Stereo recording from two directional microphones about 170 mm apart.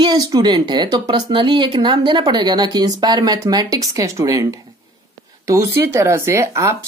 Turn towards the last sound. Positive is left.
turn(degrees=-15)  # may be behind; listen again after turning